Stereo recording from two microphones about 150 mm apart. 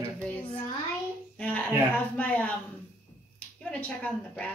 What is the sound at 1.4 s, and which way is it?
Speech, 10° left (ahead or behind).